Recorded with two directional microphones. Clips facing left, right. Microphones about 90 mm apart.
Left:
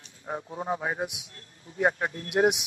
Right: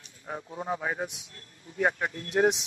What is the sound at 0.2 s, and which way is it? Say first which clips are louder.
Speech: left 2 dB; 20° left (ahead or behind).